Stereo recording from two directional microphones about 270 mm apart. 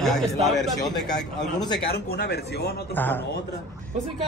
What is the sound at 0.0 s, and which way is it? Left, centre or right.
Speech, centre.